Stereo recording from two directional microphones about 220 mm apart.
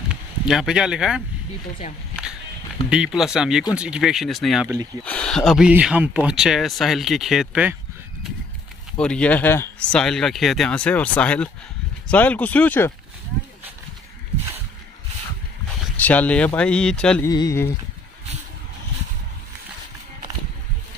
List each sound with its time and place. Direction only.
0.5 s speech: centre (ahead or behind)
2.9 s speech: centre (ahead or behind)
8.9 s speech: 5° left (ahead or behind)
16.0 s speech: 5° left (ahead or behind)
17.3 s speech: 15° left (ahead or behind)